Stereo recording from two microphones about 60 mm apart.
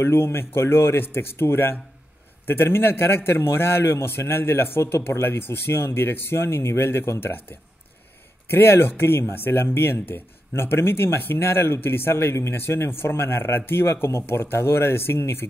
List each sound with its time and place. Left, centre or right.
0.0 s a man's voice: left